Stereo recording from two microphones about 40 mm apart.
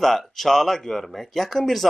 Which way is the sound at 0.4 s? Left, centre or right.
Centre.